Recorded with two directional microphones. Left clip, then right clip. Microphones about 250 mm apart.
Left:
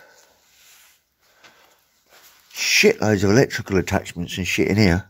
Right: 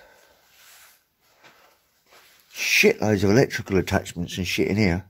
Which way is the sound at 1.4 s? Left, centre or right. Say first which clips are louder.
Left 2 dB; centre.